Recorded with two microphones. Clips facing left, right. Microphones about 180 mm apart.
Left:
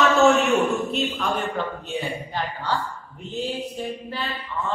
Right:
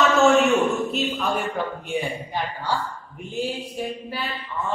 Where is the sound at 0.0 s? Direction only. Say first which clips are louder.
Even; centre (ahead or behind).